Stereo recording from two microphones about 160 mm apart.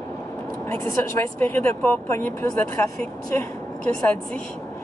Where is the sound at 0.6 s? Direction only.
15° left (ahead or behind).